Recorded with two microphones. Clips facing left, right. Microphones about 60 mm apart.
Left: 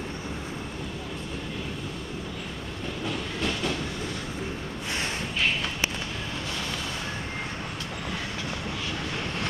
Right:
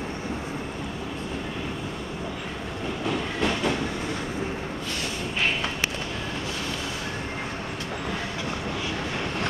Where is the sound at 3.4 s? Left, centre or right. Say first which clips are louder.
Right 4 dB; right.